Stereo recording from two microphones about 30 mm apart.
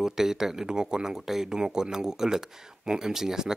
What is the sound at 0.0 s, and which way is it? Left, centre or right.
A man's voice, centre.